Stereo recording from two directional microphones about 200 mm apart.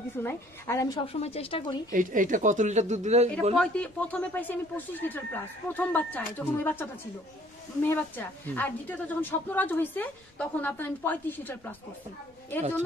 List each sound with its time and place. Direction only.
0.2 s a woman's voice: 15° left (ahead or behind)
1.2 s speech: 30° left (ahead or behind)
1.9 s speech: 40° right (ahead or behind)
3.5 s a woman's voice: 5° left (ahead or behind)